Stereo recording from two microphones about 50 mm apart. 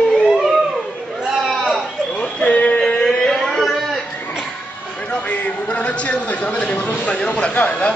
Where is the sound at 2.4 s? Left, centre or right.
Left.